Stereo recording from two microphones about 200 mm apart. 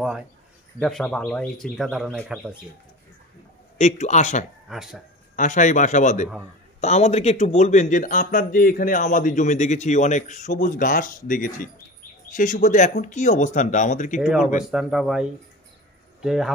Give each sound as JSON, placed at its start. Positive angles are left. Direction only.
{"t": 0.7, "sound": "speech", "side_deg": 0}
{"t": 3.7, "sound": "a man's voice", "side_deg": 35}
{"t": 4.6, "sound": "speech", "side_deg": 0}
{"t": 5.3, "sound": "a man's voice", "side_deg": 40}
{"t": 14.2, "sound": "speech", "side_deg": 0}